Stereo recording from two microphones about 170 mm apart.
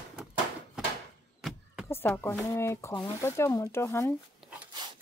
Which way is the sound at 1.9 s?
10° left (ahead or behind).